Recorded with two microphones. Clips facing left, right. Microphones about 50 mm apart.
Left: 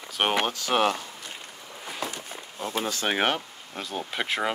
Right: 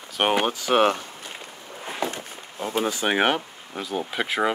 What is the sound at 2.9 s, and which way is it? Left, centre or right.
Speech, centre.